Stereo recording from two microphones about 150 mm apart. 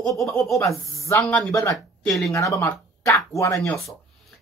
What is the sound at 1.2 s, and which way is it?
Speech, 10° left (ahead or behind).